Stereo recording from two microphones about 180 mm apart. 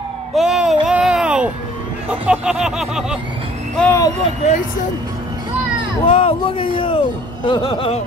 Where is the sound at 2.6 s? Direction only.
Centre (ahead or behind).